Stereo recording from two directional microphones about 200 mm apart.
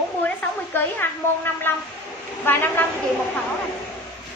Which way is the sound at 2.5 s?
10° left (ahead or behind).